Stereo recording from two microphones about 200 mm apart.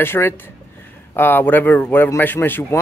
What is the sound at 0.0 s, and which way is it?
Speech, 10° left (ahead or behind).